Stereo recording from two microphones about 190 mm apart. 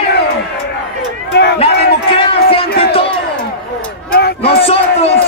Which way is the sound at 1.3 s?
60° left (ahead or behind).